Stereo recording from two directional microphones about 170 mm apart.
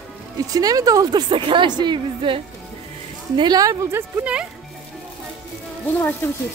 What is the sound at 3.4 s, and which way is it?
Speech, 20° right (ahead or behind).